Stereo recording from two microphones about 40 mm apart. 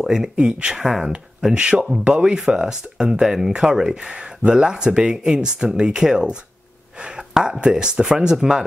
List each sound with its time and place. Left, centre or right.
0.0 s speech: centre
3.3 s speech: centre
7.0 s a sound: centre
7.7 s speech: right